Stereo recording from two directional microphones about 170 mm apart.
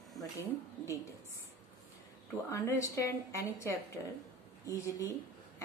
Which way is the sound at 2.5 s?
15° left (ahead or behind).